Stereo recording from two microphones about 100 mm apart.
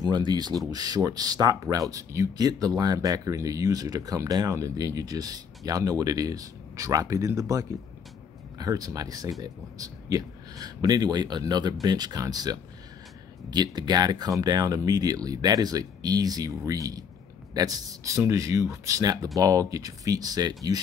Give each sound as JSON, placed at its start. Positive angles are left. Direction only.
{"t": 0.0, "sound": "speech", "side_deg": -45}